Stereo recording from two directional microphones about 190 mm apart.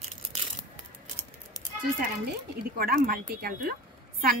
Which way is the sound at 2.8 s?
50° right (ahead or behind).